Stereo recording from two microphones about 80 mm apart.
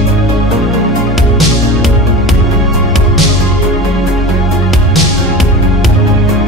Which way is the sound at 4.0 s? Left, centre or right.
Centre.